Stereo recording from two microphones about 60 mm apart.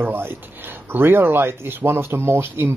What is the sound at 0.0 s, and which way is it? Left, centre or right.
Speech, right.